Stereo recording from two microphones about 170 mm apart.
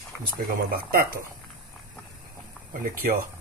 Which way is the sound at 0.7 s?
60° right (ahead or behind).